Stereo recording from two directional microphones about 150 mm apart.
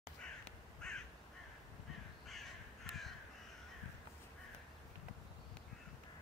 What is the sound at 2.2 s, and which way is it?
Crow, centre (ahead or behind).